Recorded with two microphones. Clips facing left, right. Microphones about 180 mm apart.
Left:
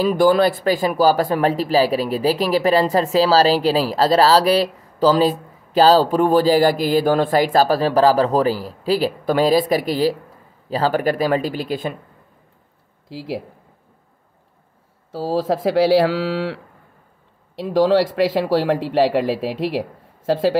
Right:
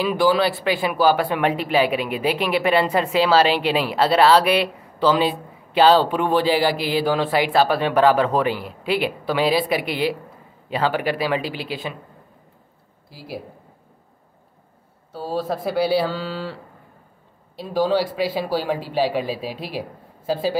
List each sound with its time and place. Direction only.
0.0 s speech: 45° left (ahead or behind)
13.1 s speech: 90° left
15.0 s speech: 90° left
17.6 s speech: 90° left